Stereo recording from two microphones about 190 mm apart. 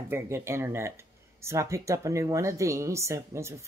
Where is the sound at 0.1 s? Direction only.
15° right (ahead or behind).